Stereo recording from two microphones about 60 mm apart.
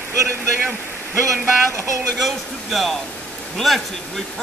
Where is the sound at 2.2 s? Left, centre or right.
Centre.